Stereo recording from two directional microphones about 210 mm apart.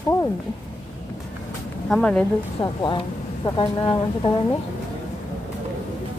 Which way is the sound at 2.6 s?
20° left (ahead or behind).